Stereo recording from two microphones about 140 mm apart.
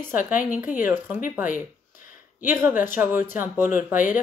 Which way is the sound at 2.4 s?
15° right (ahead or behind).